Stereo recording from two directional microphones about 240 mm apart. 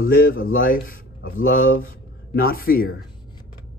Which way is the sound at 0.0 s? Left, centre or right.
Left.